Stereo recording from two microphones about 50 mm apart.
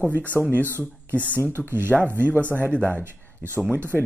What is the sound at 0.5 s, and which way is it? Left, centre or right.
Speech, right.